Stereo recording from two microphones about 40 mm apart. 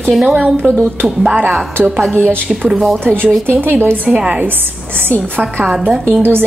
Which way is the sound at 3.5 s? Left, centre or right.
Right.